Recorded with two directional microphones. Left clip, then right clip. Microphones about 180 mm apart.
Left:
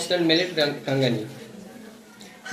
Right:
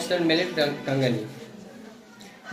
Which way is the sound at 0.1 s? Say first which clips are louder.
Left 2 dB; centre (ahead or behind).